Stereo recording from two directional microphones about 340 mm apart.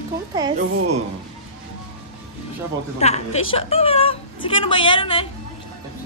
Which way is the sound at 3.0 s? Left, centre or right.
Centre.